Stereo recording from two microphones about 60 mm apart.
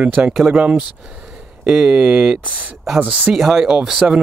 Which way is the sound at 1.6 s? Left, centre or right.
Centre.